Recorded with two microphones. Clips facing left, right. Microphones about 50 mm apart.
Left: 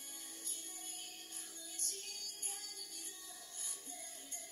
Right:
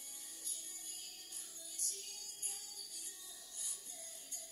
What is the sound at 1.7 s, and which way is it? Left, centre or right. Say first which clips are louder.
Music: left 2 dB; left.